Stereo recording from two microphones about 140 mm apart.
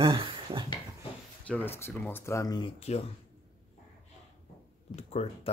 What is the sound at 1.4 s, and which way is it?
Speech, 15° left (ahead or behind).